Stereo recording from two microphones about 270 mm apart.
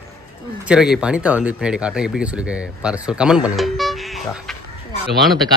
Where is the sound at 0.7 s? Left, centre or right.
Centre.